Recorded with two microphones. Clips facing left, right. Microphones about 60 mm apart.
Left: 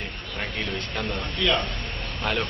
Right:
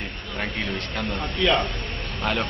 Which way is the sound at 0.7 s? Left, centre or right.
Centre.